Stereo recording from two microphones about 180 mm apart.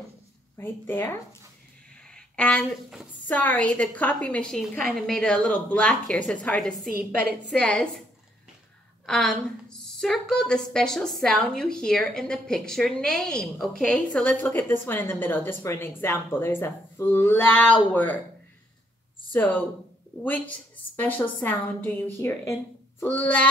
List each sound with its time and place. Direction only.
0.6 s a woman's voice: 10° left (ahead or behind)
9.0 s a woman's voice: 5° left (ahead or behind)
20.2 s a woman's voice: 10° left (ahead or behind)